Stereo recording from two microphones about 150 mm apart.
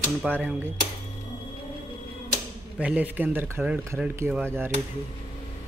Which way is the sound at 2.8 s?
10° right (ahead or behind).